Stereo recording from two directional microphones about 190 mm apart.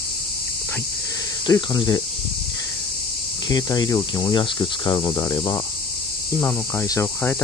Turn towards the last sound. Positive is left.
turn(degrees=10)  # may be behind; listen again after turning